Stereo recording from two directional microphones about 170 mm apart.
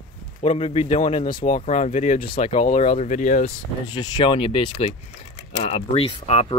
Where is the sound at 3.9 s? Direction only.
25° left (ahead or behind).